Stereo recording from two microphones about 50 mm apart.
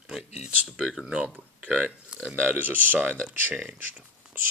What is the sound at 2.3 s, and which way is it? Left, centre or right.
Speech, right.